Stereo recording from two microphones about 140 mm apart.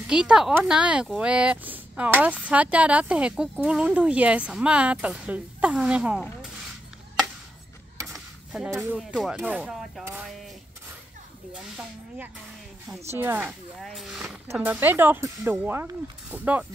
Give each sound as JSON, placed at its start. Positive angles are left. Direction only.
{"t": 0.0, "sound": "speech", "side_deg": -5}
{"t": 8.1, "sound": "a sound", "side_deg": -5}
{"t": 8.6, "sound": "speech", "side_deg": -15}
{"t": 9.1, "sound": "speech", "side_deg": -5}
{"t": 13.1, "sound": "speech", "side_deg": -15}
{"t": 13.4, "sound": "speech", "side_deg": -5}
{"t": 14.5, "sound": "speech", "side_deg": -15}